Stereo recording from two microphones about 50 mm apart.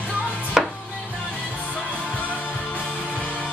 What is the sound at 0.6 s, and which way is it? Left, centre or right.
Chopping, centre.